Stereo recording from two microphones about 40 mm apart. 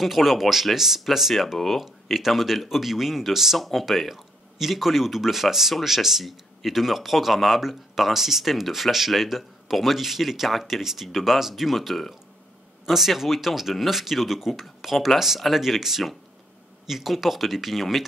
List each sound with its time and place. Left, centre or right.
0.0 s speech: centre